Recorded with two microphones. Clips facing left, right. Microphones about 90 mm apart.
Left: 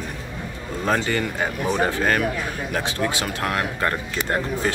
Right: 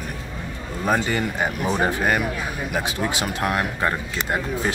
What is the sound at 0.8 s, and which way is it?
Speech, 15° right (ahead or behind).